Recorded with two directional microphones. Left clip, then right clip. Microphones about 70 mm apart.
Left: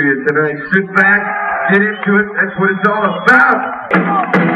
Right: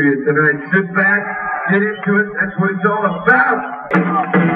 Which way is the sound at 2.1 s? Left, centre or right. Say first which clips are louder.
Left 3 dB; centre.